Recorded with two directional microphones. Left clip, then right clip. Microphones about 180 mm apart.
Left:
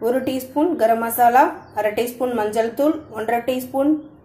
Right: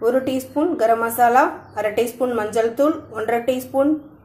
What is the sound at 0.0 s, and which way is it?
A woman's voice, centre (ahead or behind).